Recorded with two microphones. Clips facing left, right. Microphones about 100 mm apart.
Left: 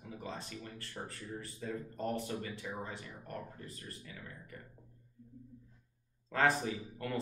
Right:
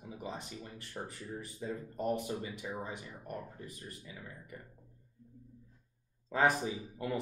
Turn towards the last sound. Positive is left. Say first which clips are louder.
# right 2 dB
turn(degrees=-15)  # may be behind; listen again after turning